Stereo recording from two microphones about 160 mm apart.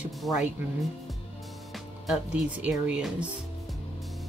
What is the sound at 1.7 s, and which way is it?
Speech, 5° right (ahead or behind).